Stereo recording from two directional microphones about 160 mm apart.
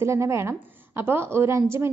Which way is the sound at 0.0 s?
15° right (ahead or behind).